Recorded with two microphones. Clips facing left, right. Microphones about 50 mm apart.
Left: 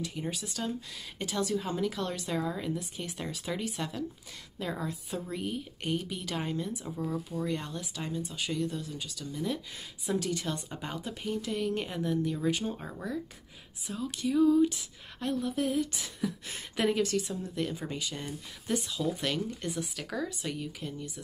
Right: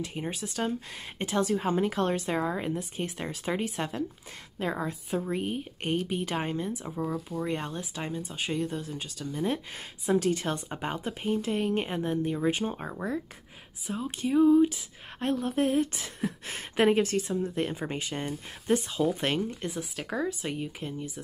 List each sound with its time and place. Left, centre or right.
0.0 s speech: right
15.4 s speech: right